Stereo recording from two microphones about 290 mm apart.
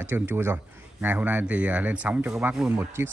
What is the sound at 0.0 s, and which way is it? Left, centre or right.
Speech, centre.